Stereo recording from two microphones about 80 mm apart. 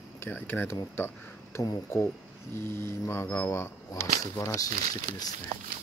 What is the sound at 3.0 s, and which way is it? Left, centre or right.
Speech, left.